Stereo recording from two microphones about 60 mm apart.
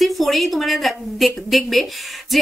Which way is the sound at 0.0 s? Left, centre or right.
Centre.